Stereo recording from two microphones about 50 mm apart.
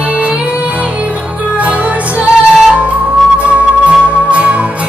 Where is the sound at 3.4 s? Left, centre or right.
Right.